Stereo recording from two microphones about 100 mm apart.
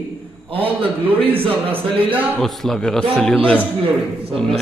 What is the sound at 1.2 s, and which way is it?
Speech, 70° right (ahead or behind).